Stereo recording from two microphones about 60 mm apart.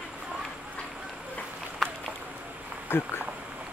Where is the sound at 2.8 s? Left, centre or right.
Left.